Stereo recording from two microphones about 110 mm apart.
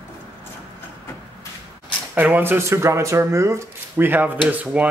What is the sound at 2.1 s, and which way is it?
Speech, 15° right (ahead or behind).